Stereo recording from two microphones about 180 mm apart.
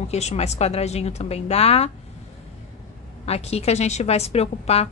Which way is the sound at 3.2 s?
35° left (ahead or behind).